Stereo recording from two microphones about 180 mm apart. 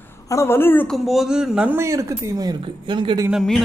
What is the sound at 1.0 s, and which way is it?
Speech, 5° right (ahead or behind).